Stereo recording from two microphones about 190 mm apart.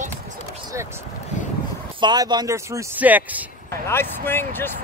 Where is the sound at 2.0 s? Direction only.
25° right (ahead or behind).